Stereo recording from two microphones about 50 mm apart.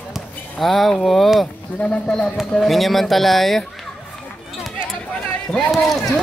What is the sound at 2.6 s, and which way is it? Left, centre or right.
Speech, centre.